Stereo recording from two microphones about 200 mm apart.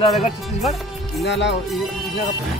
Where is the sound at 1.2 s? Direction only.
60° left (ahead or behind).